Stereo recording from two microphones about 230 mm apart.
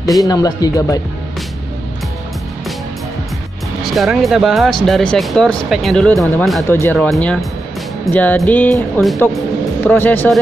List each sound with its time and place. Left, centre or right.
0.2 s speech: centre
3.9 s speech: centre